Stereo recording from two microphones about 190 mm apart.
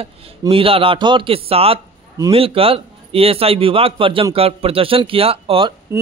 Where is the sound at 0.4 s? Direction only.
30° right (ahead or behind).